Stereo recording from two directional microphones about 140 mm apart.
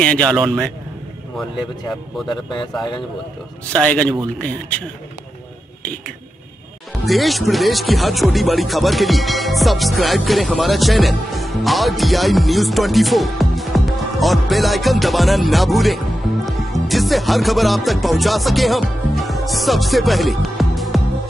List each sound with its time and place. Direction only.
0.0 s speech: 5° left (ahead or behind)
2.2 s speech: 35° left (ahead or behind)
3.7 s speech: 10° left (ahead or behind)
7.1 s speech: centre (ahead or behind)
16.4 s music: centre (ahead or behind)